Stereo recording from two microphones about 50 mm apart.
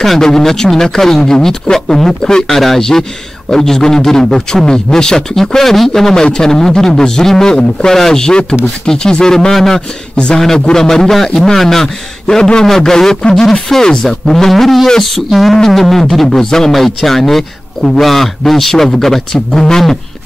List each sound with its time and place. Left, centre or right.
0.0 s a man's voice: centre
9.8 s a man's voice: centre